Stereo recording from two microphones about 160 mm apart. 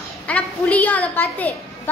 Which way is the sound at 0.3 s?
10° left (ahead or behind).